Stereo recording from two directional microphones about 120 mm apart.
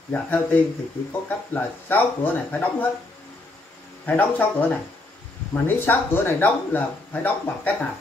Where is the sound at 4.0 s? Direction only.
15° left (ahead or behind).